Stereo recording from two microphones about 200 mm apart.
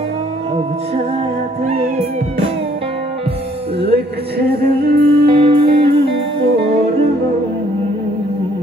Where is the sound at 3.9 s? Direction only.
50° right (ahead or behind).